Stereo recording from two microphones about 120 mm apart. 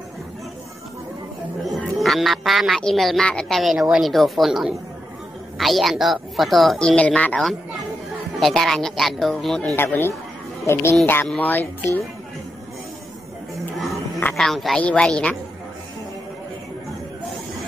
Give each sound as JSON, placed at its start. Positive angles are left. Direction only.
{"t": 2.0, "sound": "speech", "side_deg": 0}
{"t": 9.8, "sound": "speech", "side_deg": 20}
{"t": 14.3, "sound": "speech", "side_deg": 0}